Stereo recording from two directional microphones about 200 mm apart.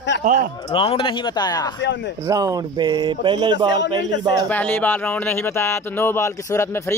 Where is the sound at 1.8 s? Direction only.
65° left (ahead or behind).